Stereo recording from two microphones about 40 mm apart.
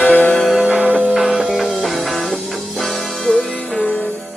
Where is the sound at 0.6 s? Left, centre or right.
Right.